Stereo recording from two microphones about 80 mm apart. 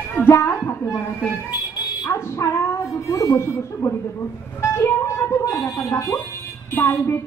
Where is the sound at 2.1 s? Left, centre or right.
Left.